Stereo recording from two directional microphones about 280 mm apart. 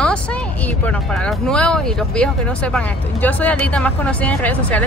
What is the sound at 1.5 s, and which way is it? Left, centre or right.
Speech, centre.